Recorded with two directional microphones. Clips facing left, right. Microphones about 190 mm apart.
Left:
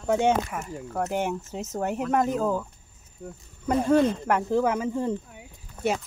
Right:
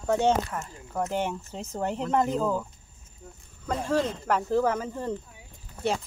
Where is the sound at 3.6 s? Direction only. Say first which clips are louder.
Left 6 dB; 10° left (ahead or behind).